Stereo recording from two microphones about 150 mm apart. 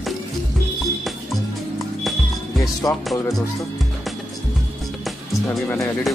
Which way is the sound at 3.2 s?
20° left (ahead or behind).